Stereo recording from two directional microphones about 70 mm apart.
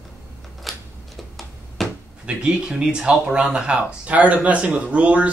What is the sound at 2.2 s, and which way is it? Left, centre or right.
Speech, centre.